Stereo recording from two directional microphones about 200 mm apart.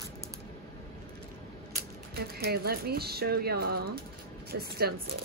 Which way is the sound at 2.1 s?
50° right (ahead or behind).